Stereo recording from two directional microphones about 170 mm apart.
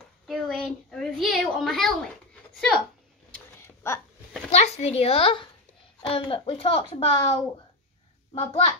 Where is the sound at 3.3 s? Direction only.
15° left (ahead or behind).